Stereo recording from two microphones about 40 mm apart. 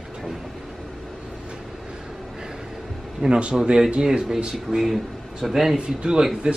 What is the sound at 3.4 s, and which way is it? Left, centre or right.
Speech, right.